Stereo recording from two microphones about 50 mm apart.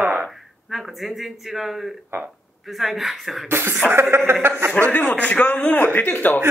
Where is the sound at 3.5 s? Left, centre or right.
Right.